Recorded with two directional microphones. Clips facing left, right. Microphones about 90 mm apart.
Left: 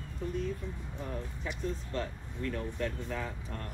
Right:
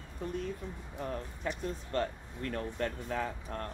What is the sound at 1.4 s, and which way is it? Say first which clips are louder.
Speech: left 1 dB; 50° right (ahead or behind).